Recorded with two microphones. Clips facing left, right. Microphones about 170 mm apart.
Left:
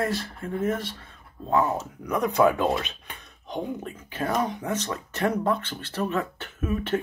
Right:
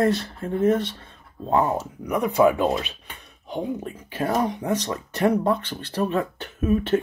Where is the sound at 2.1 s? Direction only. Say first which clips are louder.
Right 2 dB; 15° right (ahead or behind).